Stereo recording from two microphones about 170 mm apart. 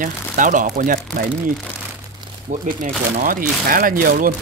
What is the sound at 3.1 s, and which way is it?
Speech, 55° right (ahead or behind).